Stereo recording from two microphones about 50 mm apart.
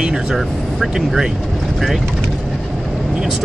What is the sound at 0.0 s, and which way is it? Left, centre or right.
Speech, centre.